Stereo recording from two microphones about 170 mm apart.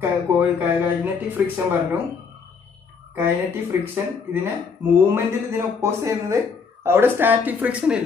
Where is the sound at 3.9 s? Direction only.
15° right (ahead or behind).